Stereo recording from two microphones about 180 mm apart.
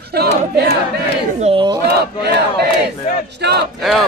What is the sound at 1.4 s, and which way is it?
Speech, 30° right (ahead or behind).